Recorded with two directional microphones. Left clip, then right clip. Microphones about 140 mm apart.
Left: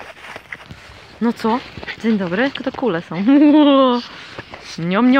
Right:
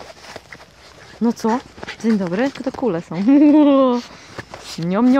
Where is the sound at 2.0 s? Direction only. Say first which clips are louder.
Left 1 dB; 5° right (ahead or behind).